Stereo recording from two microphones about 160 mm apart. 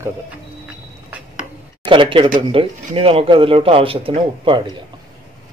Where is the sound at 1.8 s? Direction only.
30° right (ahead or behind).